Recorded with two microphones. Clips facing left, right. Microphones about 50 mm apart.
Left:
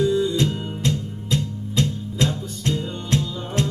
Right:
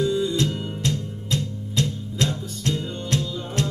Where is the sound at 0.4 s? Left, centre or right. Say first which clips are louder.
Left 2 dB; left.